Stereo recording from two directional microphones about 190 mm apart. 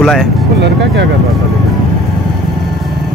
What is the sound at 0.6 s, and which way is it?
Speech, 65° right (ahead or behind).